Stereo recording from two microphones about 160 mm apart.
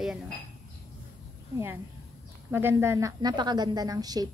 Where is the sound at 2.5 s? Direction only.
15° right (ahead or behind).